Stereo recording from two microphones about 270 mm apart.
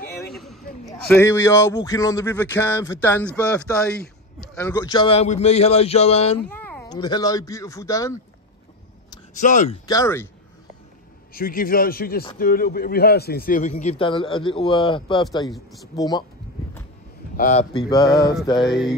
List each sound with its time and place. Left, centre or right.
0.3 s a sound: centre
0.8 s a man's voice: centre
6.5 s speech: centre
9.3 s a man's voice: left
9.8 s speech: centre
11.3 s a man's voice: left; by 16.3 s centre
17.4 s a man's voice: left
17.8 s speech: centre
18.6 s a sound: centre